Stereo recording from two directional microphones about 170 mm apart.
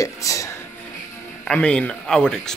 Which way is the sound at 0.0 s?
20° left (ahead or behind).